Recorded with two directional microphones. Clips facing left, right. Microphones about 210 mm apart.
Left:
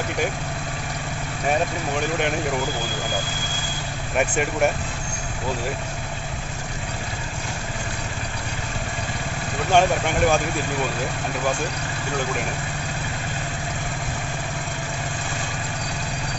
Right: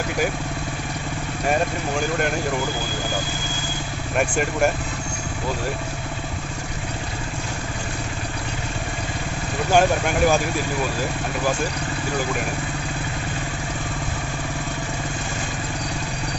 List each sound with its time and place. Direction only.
4.2 s speech: centre (ahead or behind)
9.7 s speech: 5° right (ahead or behind)